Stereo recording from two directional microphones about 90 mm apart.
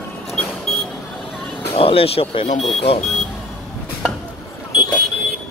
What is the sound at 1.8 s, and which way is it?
Speech, 90° left.